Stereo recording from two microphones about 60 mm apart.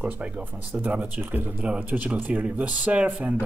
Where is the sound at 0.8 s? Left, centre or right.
Right.